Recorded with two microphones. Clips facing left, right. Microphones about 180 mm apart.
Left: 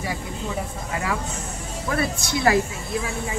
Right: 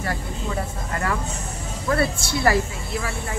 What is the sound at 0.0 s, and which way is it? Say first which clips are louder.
Speech: right 1 dB; 10° left (ahead or behind).